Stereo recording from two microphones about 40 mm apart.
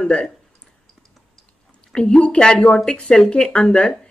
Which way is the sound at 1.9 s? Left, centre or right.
Left.